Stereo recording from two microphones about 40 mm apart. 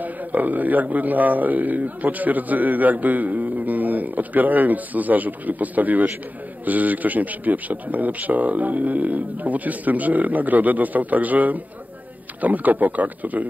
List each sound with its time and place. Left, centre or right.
0.0 s a man's voice: right